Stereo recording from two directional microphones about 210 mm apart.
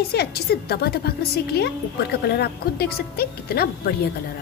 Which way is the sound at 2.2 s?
50° left (ahead or behind).